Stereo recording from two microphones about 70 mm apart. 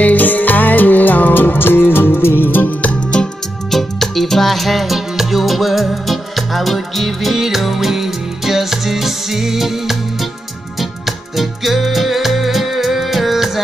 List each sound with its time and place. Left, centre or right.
0.0 s music: left
3.7 s music: centre